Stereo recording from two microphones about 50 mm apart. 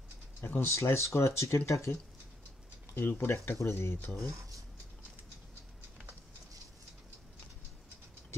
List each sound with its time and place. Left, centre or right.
0.4 s speech: left
0.7 s speech: left
3.1 s speech: left
3.5 s speech: left